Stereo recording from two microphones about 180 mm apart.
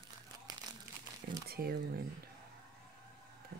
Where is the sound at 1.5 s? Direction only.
60° right (ahead or behind).